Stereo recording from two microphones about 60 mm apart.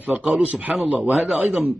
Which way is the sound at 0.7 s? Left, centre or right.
Centre.